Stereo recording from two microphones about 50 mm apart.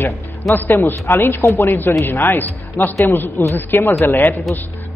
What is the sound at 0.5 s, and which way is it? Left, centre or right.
A man's voice, left.